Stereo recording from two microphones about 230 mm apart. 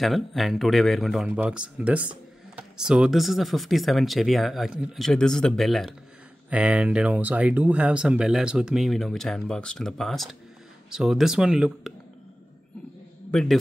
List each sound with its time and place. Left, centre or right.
0.0 s speech: centre
13.3 s speech: centre